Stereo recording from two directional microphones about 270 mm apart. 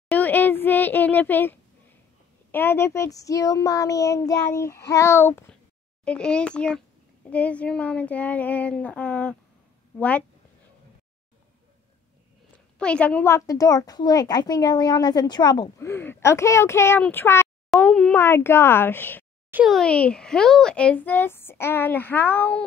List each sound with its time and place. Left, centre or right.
0.1 s a sound: centre
2.5 s a woman's voice: centre
12.7 s a woman's voice: centre